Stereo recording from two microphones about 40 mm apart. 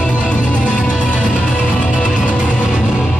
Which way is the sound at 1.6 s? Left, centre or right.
Left.